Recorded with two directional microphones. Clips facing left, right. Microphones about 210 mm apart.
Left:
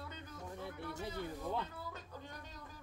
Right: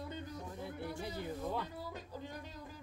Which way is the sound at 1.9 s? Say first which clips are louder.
Right 5 dB; 10° right (ahead or behind).